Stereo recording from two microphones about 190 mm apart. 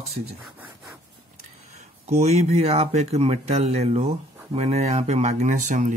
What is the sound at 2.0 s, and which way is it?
Speech, 35° right (ahead or behind).